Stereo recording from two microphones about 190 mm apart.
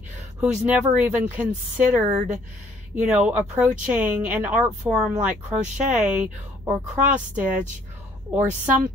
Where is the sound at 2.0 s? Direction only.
35° right (ahead or behind).